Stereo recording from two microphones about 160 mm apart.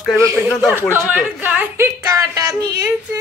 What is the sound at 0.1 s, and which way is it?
A man's voice, 20° right (ahead or behind).